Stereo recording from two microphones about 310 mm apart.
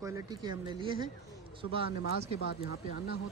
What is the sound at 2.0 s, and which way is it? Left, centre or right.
Speech, left.